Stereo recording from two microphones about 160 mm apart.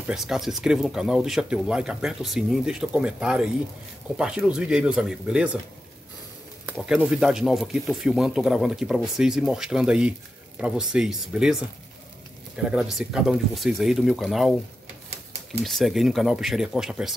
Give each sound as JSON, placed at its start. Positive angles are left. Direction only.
{"t": 0.0, "sound": "speech", "side_deg": -5}
{"t": 7.1, "sound": "speech", "side_deg": -5}
{"t": 12.7, "sound": "speech", "side_deg": -5}
{"t": 15.6, "sound": "speech", "side_deg": 0}